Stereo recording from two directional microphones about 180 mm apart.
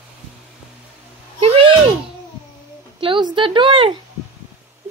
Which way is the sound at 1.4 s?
30° right (ahead or behind).